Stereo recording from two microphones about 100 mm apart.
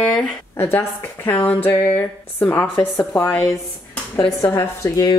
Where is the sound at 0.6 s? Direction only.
25° left (ahead or behind).